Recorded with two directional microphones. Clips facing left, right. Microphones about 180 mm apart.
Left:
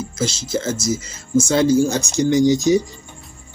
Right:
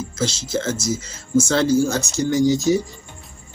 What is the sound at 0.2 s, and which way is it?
Speech, 10° left (ahead or behind).